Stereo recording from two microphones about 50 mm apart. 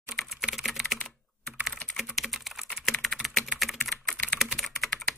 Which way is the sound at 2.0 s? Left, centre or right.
Centre.